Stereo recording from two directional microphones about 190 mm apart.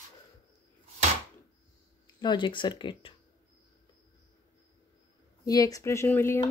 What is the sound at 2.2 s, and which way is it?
Speech, 25° left (ahead or behind).